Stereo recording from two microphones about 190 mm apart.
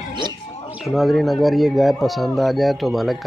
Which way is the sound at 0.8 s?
Centre (ahead or behind).